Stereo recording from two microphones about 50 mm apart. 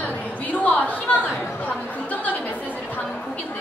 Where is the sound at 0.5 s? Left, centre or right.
Left.